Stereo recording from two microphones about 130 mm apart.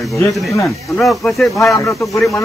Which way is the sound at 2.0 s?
Centre (ahead or behind).